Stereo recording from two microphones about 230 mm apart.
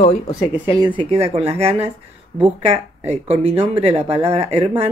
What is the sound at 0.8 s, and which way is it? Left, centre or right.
Speech, right.